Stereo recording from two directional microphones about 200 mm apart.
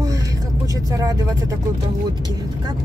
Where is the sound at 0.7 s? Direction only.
15° right (ahead or behind).